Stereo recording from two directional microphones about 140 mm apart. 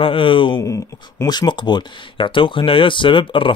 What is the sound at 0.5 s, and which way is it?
Speech, 20° left (ahead or behind).